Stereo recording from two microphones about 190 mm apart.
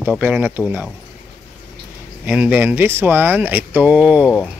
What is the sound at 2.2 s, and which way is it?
Speech, 10° right (ahead or behind).